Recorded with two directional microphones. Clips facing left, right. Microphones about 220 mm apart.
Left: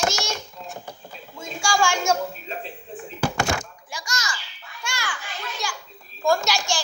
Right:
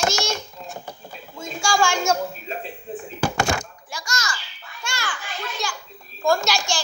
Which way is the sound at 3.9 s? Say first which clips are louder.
Right 2 dB; 15° left (ahead or behind).